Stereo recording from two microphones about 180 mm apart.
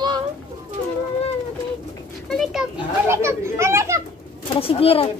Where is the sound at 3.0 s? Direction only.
15° right (ahead or behind).